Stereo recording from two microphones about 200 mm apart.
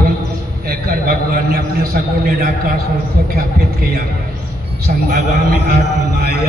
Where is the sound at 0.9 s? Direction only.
50° right (ahead or behind).